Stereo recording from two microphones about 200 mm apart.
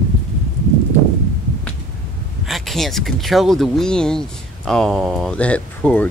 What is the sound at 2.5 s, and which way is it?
Speech, centre (ahead or behind).